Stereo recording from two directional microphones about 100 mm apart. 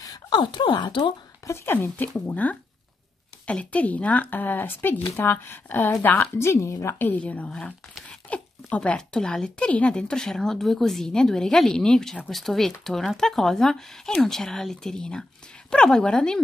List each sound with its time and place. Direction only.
0.0 s a sound: 40° left (ahead or behind)
0.4 s speech: 55° left (ahead or behind)
1.4 s speech: 25° left (ahead or behind)
7.0 s speech: 15° left (ahead or behind)